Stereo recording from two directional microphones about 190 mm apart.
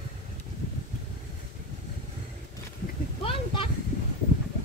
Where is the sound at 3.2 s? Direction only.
30° left (ahead or behind).